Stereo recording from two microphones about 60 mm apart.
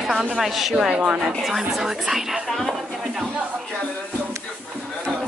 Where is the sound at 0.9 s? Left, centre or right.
Centre.